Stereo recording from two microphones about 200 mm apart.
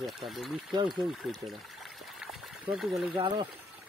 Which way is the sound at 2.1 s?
Centre (ahead or behind).